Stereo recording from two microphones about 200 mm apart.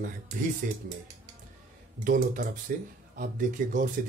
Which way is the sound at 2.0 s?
45° right (ahead or behind).